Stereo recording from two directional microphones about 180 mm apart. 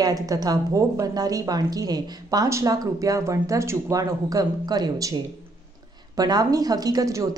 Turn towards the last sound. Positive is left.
turn(degrees=-20)  # may be behind; listen again after turning